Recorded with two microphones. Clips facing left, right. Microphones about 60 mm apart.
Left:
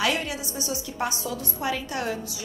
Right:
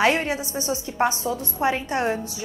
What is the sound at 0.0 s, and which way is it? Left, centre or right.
A woman's voice, right.